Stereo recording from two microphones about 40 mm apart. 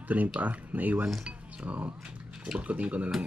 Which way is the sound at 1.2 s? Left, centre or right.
Right.